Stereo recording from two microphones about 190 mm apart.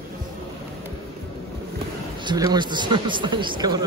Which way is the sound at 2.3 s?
20° right (ahead or behind).